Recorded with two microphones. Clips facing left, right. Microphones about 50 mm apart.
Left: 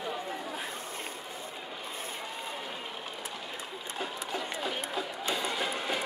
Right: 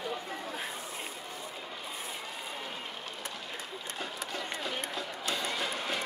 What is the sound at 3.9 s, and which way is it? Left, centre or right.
Music, centre.